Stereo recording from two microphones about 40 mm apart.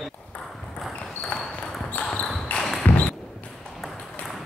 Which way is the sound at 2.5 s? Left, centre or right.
Left.